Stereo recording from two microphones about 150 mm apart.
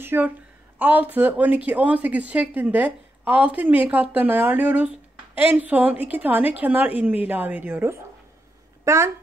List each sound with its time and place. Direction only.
0.0 s a woman's voice: 15° right (ahead or behind)